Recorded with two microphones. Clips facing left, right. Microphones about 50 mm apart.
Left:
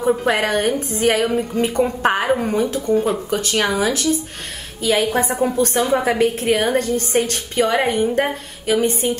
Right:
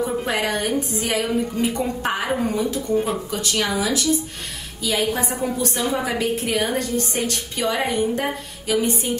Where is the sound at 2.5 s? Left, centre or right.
Left.